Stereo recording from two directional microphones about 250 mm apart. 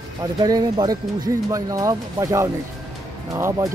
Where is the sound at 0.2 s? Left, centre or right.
Centre.